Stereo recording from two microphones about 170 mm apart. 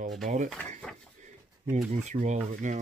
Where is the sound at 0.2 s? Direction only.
45° right (ahead or behind).